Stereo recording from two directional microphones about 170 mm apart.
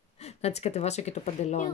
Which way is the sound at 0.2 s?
40° left (ahead or behind).